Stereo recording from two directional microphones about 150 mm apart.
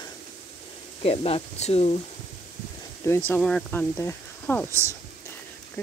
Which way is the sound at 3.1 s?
20° left (ahead or behind).